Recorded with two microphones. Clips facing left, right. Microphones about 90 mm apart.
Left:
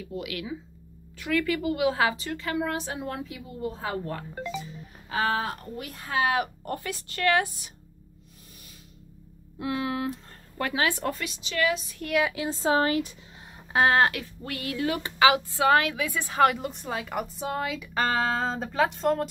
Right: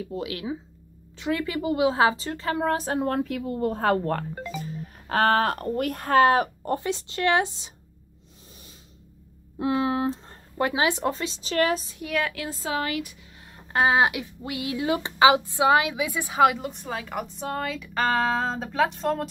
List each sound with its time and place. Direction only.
0.0 s a woman's voice: 30° right (ahead or behind)
6.6 s speech: 25° right (ahead or behind)
9.6 s speech: 30° right (ahead or behind)
11.5 s speech: 40° right (ahead or behind)
12.3 s speech: 20° left (ahead or behind)
12.6 s speech: 35° left (ahead or behind)
13.7 s speech: 5° right (ahead or behind)